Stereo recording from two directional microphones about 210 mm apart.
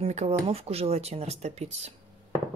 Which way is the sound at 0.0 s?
30° right (ahead or behind).